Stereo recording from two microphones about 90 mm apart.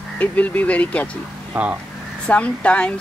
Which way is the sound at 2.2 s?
15° left (ahead or behind).